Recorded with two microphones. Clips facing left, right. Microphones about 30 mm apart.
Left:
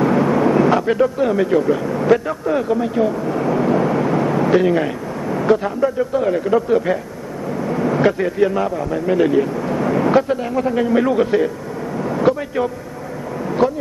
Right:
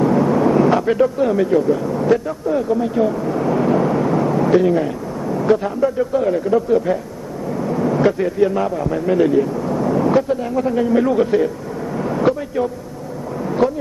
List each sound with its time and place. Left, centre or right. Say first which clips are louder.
0.0 s speech: even; left
3.0 s a sound: even; centre; by 4.9 s left
5.2 s vehicle: even; left
5.6 s speech: even; centre
7.5 s vehicle: even; centre
8.6 s a man's voice: right 1 dB; centre
9.3 s a man's voice: even; left
12.0 s a sound: left 1 dB; centre